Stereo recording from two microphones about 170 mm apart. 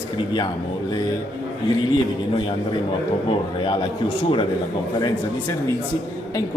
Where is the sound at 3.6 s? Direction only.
30° left (ahead or behind).